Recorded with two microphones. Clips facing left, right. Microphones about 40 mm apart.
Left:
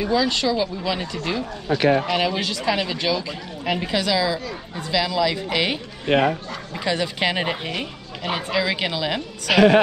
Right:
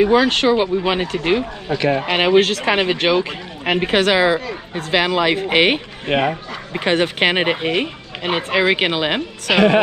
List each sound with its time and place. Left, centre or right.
0.0 s speech: right
6.0 s speech: right
6.7 s speech: right